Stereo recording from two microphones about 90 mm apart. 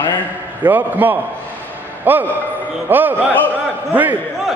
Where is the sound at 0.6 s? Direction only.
20° right (ahead or behind).